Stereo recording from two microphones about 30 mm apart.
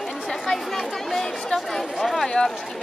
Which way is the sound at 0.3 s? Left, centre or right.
Centre.